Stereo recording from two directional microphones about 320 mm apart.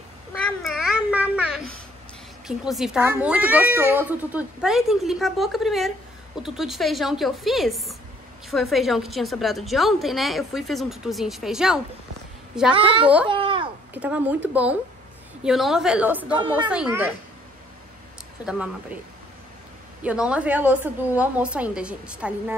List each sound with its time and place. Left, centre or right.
0.5 s babbling: centre
2.4 s speech: centre
12.7 s a woman's voice: centre
13.3 s a sound: centre
13.9 s speech: centre
18.4 s speech: centre
20.0 s speech: centre